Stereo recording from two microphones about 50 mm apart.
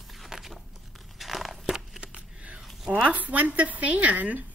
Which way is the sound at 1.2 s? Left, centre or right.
Centre.